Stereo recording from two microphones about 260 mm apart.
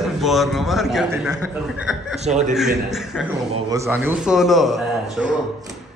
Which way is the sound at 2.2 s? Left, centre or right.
Right.